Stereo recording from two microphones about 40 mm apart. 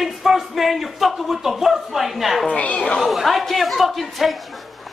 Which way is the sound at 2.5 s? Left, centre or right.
Left.